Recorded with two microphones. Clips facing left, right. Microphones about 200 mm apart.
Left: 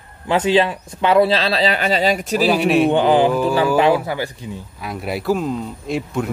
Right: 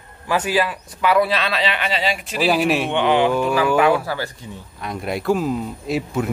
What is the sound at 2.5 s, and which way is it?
Speech, centre (ahead or behind).